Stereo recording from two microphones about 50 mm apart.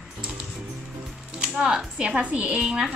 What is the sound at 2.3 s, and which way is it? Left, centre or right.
Speech, right.